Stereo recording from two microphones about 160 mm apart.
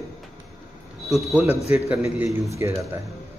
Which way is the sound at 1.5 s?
40° left (ahead or behind).